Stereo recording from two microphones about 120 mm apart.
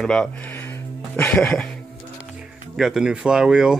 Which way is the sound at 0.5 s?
20° left (ahead or behind).